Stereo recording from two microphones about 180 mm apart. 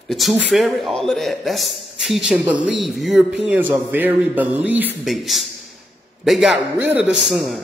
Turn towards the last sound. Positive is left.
turn(degrees=0)  # may be behind; listen again after turning